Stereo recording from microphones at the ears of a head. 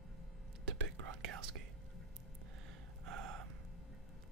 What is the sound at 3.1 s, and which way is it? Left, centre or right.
Speech, right.